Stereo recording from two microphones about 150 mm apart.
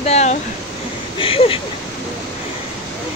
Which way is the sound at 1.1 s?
35° left (ahead or behind).